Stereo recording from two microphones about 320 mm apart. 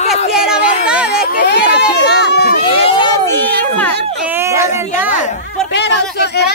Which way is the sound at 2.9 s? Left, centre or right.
Centre.